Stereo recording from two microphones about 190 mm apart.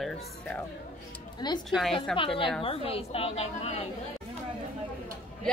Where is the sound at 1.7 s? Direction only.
Centre (ahead or behind).